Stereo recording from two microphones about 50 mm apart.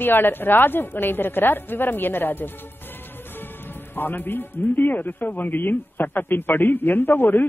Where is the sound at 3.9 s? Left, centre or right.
Left.